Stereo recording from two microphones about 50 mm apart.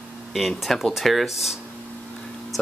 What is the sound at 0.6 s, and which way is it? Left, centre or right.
Speech, centre.